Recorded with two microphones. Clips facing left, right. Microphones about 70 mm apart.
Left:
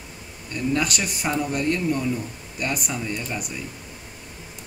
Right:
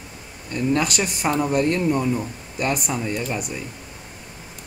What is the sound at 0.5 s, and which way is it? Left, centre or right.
Speech, centre.